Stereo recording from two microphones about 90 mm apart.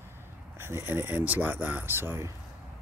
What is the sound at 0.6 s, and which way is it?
Speech, 25° right (ahead or behind).